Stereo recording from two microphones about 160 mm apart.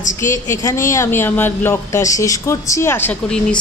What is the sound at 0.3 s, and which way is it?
A woman's voice, 15° left (ahead or behind).